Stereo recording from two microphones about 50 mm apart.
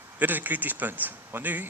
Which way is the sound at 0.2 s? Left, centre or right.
Right.